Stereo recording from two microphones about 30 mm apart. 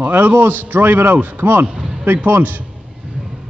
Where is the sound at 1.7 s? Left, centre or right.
Centre.